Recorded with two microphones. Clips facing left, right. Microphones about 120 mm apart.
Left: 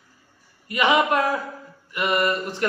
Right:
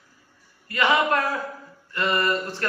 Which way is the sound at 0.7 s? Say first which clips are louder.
Left 2 dB; 15° left (ahead or behind).